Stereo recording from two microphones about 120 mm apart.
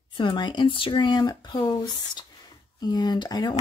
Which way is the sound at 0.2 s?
40° left (ahead or behind).